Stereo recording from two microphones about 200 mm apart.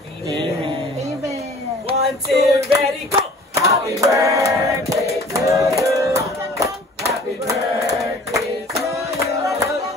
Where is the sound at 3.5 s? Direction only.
15° right (ahead or behind).